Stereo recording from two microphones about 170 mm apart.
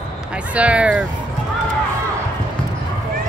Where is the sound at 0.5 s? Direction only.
10° right (ahead or behind).